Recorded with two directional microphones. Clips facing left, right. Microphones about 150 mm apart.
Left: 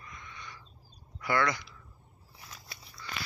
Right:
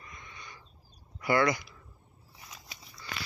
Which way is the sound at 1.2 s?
15° right (ahead or behind).